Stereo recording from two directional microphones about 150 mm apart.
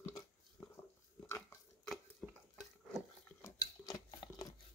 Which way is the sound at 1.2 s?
15° left (ahead or behind).